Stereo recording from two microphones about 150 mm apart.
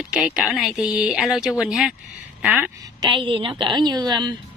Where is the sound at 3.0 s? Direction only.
35° right (ahead or behind).